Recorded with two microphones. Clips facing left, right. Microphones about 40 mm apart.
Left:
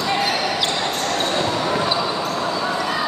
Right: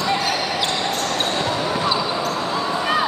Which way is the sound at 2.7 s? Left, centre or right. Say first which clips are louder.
Right 2 dB; right.